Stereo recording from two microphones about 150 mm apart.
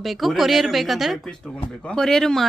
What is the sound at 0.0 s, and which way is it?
A woman's voice, centre (ahead or behind).